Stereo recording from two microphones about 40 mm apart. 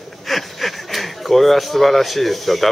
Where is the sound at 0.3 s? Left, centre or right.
Centre.